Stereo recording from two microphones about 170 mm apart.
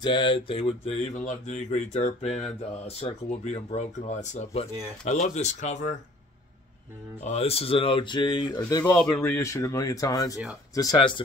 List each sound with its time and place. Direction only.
0.0 s speech: 30° left (ahead or behind); by 5.9 s 45° left (ahead or behind)
7.2 s speech: 35° left (ahead or behind); by 11.0 s 20° left (ahead or behind)